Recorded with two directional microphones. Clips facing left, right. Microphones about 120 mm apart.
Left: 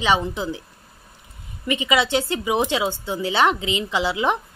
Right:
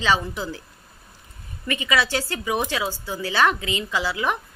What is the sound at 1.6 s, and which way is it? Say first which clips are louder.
Speech: left 3 dB; 20° left (ahead or behind).